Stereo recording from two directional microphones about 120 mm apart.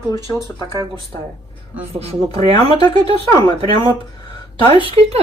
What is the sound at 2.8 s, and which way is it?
Speech, 35° left (ahead or behind).